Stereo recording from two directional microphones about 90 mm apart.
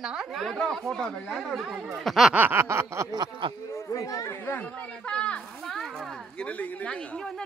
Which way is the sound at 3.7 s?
35° left (ahead or behind).